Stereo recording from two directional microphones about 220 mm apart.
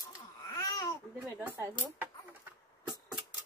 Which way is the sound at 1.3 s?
10° right (ahead or behind).